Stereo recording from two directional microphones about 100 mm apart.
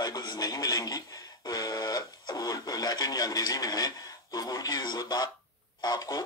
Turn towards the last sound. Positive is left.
turn(degrees=40)  # may be behind; listen again after turning